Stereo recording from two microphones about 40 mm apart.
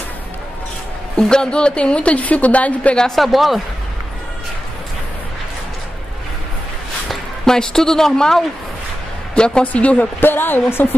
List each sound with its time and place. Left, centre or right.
1.3 s a woman's voice: left
3.2 s speech: centre
7.4 s a woman's voice: centre
9.3 s a woman's voice: left
10.2 s speech: left